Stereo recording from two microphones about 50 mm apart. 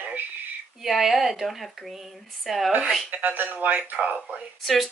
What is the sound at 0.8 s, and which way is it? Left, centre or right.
Speech, centre.